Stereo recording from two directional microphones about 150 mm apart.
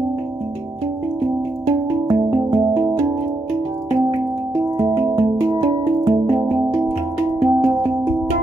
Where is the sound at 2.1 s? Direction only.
25° right (ahead or behind).